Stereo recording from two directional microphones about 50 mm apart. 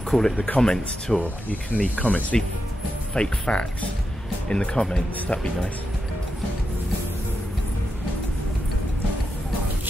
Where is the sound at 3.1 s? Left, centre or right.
Centre.